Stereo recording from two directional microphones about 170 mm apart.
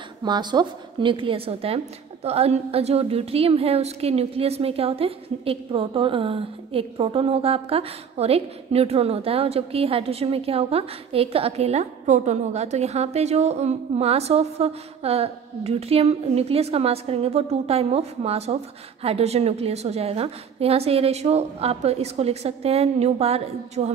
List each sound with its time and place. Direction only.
0.2 s a woman's voice: 25° right (ahead or behind)